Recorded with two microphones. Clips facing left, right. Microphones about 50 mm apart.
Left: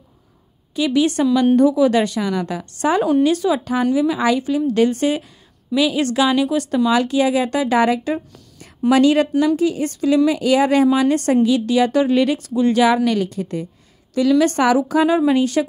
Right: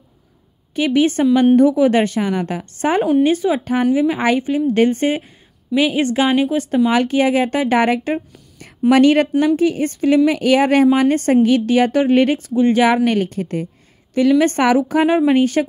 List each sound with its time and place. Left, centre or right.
0.7 s a woman's voice: right